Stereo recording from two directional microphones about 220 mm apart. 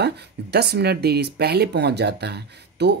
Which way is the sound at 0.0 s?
50° right (ahead or behind).